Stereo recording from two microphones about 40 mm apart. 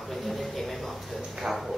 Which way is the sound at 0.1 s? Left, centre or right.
Centre.